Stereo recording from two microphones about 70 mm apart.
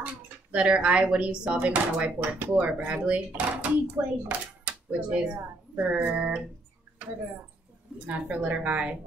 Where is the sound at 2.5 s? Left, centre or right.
Centre.